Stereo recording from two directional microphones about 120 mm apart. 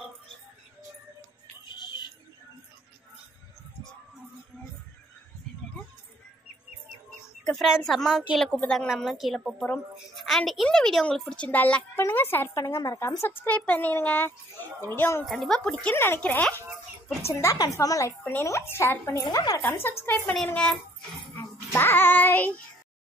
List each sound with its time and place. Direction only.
1.7 s a sound: 40° left (ahead or behind)
7.1 s a woman's voice: 5° left (ahead or behind)
15.2 s a woman's voice: 5° left (ahead or behind)
17.3 s a woman's voice: 25° left (ahead or behind)